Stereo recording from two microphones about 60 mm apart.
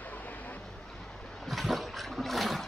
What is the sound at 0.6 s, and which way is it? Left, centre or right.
Boat, centre.